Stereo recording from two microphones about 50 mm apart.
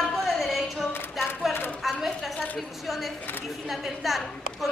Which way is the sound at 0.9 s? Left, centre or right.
Left.